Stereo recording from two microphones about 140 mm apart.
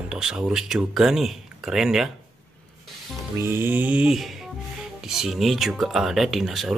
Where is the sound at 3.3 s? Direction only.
15° right (ahead or behind).